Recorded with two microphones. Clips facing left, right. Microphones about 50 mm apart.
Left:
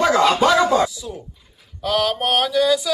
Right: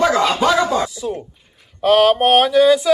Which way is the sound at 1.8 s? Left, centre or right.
Right.